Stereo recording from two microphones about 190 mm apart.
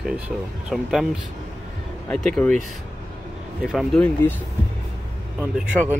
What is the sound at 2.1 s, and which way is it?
Speech, centre (ahead or behind).